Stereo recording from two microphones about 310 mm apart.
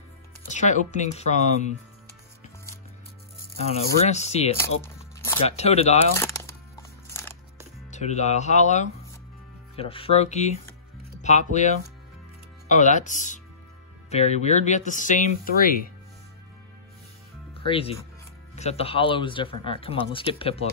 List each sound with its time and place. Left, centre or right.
0.5 s speech: left
4.0 s speech: left
4.6 s music: centre
5.6 s speech: left
6.1 s music: centre
7.9 s speech: left
17.6 s speech: centre